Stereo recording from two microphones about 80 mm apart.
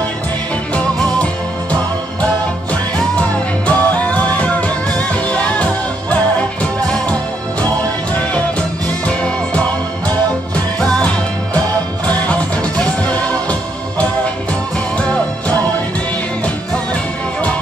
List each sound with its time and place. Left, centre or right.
0.7 s music: centre
8.4 s music: centre
12.1 s music: centre